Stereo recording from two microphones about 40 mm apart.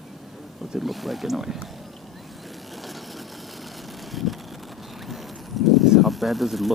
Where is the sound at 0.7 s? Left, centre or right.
Centre.